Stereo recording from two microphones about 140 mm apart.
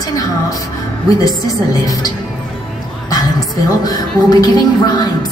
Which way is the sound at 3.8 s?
30° left (ahead or behind).